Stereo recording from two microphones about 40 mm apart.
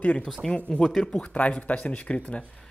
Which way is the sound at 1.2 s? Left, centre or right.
Left.